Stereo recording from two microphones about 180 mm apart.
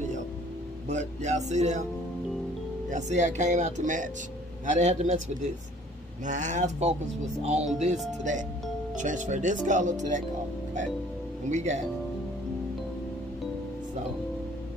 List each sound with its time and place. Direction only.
0.8 s speech: 40° right (ahead or behind)
2.9 s speech: 40° right (ahead or behind)
6.2 s speech: 45° right (ahead or behind)
11.5 s speech: 40° right (ahead or behind)